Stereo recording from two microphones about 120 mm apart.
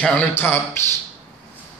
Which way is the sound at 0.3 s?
20° left (ahead or behind).